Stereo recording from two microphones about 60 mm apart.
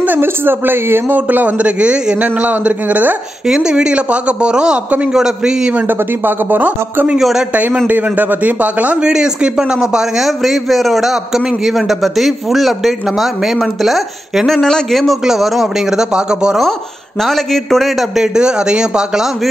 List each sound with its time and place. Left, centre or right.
0.0 s speech: right
1.0 s a man's voice: right
3.4 s a man's voice: centre
5.8 s speech: right
7.2 s a man's voice: centre
7.5 s a man's voice: right
9.1 s a man's voice: centre
14.6 s a man's voice: centre
17.2 s a man's voice: centre